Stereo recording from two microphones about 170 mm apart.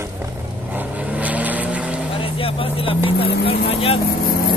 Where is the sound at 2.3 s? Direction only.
30° left (ahead or behind).